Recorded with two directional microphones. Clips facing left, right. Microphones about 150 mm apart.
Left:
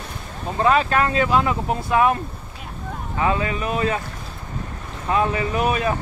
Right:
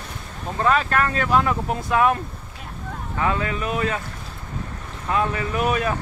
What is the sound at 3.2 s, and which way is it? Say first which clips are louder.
Speech: left 2 dB; 15° left (ahead or behind).